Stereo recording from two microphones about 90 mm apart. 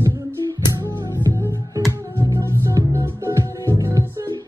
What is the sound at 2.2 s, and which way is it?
Music, 30° right (ahead or behind).